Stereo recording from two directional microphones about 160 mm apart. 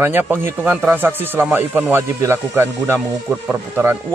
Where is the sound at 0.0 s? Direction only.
15° right (ahead or behind).